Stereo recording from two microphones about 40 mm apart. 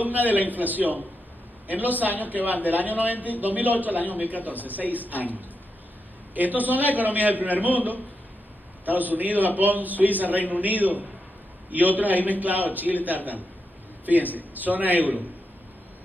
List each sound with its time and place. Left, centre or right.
0.0 s a sound: right
0.5 s a man's voice: right
6.3 s a man's voice: right